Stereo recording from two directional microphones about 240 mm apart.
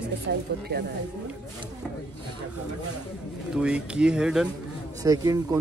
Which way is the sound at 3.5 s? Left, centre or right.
Centre.